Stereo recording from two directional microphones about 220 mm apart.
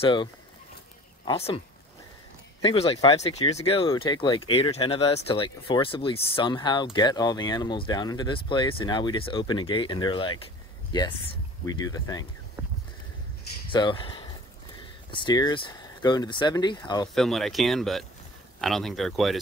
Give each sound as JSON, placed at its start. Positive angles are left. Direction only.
{"t": 0.0, "sound": "speech", "side_deg": 20}
{"t": 2.6, "sound": "speech", "side_deg": 25}
{"t": 11.6, "sound": "speech", "side_deg": 15}
{"t": 13.7, "sound": "speech", "side_deg": 20}
{"t": 17.1, "sound": "speech", "side_deg": 0}